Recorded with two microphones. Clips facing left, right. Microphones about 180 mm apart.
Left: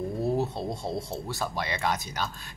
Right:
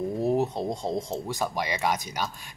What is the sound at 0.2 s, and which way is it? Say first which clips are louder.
Speech: right 3 dB; 15° right (ahead or behind).